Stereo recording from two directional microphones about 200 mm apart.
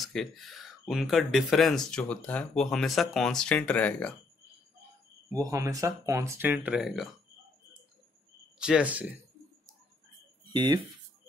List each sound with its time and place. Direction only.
0.0 s speech: centre (ahead or behind)
5.3 s speech: 15° right (ahead or behind)
8.5 s speech: 5° right (ahead or behind)
10.4 s speech: 20° right (ahead or behind)